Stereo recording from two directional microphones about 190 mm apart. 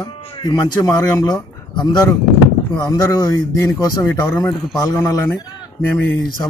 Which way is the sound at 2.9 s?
15° left (ahead or behind).